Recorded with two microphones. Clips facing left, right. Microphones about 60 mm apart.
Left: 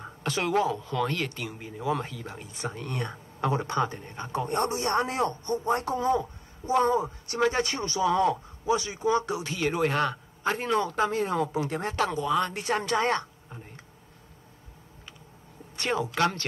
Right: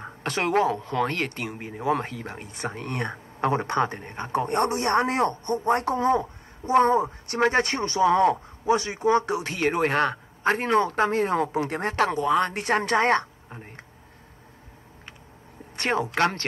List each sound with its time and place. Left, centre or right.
0.0 s speech: right
13.5 s a sound: right
15.7 s speech: right